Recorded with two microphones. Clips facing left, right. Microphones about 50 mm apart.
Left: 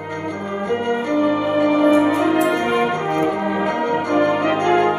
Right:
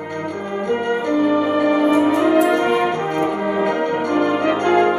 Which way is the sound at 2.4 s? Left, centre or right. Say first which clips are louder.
Right 1 dB; centre.